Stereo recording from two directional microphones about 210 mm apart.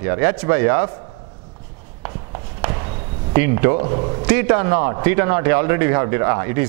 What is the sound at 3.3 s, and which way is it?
Speech, 15° right (ahead or behind).